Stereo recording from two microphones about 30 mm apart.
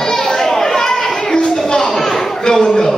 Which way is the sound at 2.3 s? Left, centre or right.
Centre.